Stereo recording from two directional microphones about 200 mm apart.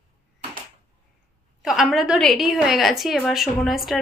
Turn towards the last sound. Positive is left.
turn(degrees=0)  # may be behind; listen again after turning